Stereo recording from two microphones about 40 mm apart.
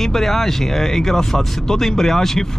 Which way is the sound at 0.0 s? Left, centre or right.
Centre.